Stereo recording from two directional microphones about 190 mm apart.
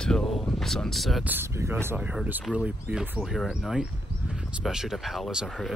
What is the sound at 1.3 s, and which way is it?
Speech, 15° right (ahead or behind).